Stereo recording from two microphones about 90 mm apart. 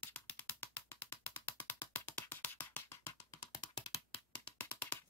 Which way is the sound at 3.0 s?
40° left (ahead or behind).